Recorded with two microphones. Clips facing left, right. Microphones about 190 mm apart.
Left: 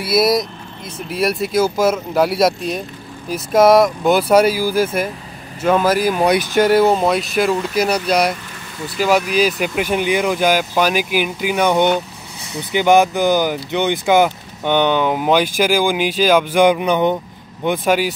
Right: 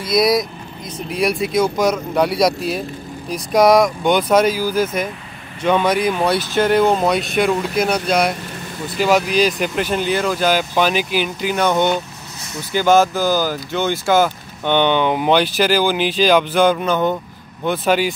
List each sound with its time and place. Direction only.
0.0 s speech: 5° left (ahead or behind)